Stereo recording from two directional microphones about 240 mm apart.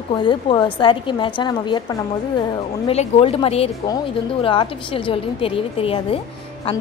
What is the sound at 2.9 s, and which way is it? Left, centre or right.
Speech, left.